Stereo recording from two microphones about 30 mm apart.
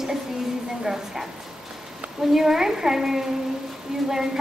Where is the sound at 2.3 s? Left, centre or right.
Centre.